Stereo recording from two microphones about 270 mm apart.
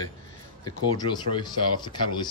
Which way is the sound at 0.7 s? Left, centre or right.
Centre.